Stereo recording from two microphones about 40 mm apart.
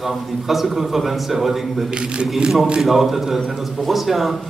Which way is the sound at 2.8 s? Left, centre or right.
Centre.